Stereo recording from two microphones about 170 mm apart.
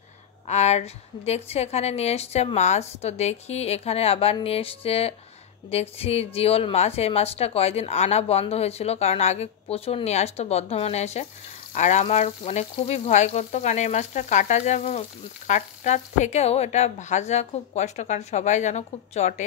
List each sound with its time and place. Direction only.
0.5 s speech: 40° left (ahead or behind)
11.7 s frying: 45° left (ahead or behind)